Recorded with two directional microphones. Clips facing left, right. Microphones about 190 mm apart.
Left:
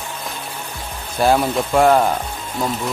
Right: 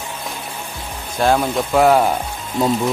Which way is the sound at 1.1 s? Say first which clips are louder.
Even; 5° left (ahead or behind).